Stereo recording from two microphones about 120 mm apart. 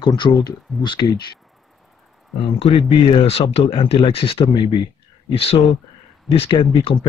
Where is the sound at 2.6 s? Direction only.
50° left (ahead or behind).